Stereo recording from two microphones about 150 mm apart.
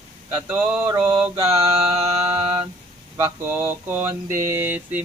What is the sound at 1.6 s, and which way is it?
Mantra, 40° right (ahead or behind).